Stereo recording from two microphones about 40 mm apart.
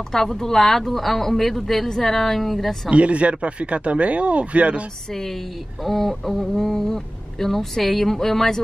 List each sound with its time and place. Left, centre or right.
0.1 s a woman's voice: centre
2.9 s speech: right
5.9 s speech: centre